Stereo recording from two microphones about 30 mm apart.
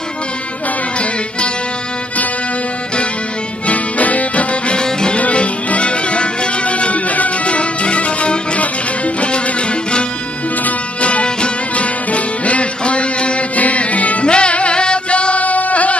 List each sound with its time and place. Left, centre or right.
3.6 s music: left
4.7 s music: left
5.3 s music: left
11.0 s music: left
13.6 s music: left
14.2 s music: left